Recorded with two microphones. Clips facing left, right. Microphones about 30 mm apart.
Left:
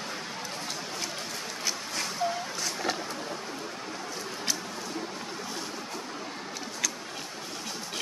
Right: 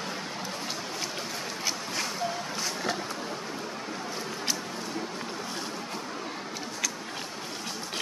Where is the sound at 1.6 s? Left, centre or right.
Centre.